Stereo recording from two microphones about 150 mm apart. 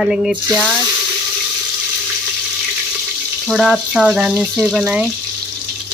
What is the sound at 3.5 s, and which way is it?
Speech, centre (ahead or behind).